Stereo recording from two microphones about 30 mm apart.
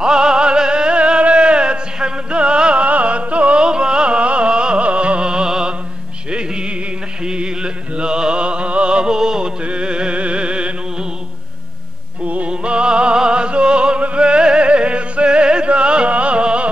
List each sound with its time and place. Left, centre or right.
0.0 s music: right
9.7 s music: right
12.4 s music: right